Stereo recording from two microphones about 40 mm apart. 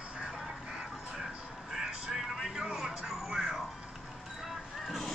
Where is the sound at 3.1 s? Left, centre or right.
Centre.